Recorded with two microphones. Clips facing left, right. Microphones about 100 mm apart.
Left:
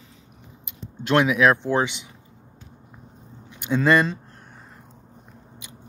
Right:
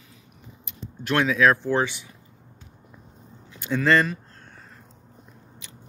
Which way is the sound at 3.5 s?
20° left (ahead or behind).